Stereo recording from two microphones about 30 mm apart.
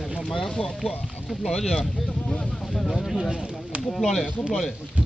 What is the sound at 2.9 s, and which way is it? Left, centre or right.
Speech, centre.